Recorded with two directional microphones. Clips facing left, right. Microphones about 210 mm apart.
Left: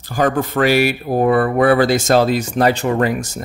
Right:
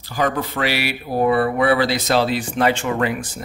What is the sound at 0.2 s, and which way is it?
Speech, 45° left (ahead or behind).